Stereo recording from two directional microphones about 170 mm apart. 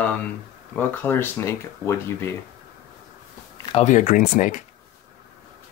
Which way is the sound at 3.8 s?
45° left (ahead or behind).